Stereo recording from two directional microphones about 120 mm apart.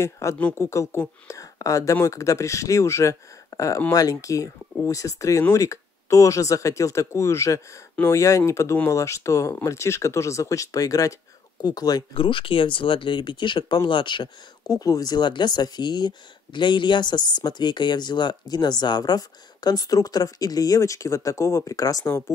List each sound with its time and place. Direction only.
0.0 s speech: 25° left (ahead or behind)
12.1 s speech: 45° left (ahead or behind); by 22.2 s 25° left (ahead or behind)